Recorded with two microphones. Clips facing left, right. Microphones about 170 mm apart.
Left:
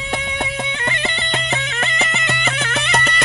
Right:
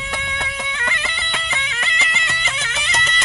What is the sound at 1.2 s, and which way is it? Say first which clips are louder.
Music: left 5 dB; 40° left (ahead or behind).